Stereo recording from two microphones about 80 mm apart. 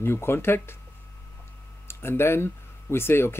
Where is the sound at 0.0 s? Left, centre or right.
Left.